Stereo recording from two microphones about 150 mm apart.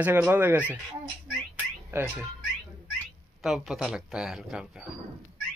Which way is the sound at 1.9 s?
15° right (ahead or behind).